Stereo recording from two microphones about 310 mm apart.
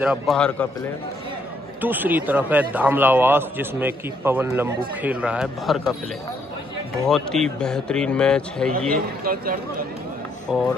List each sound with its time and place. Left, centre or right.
0.0 s a man's voice: centre
1.8 s a man's voice: centre
7.1 s a man's voice: centre
8.9 s speech: right
10.5 s a man's voice: centre